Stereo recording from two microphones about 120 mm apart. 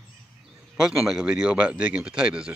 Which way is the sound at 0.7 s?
5° right (ahead or behind).